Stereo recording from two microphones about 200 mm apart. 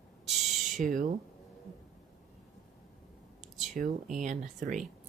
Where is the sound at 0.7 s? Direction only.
40° right (ahead or behind).